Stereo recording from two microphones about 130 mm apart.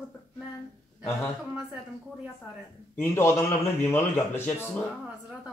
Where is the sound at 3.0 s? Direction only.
20° left (ahead or behind).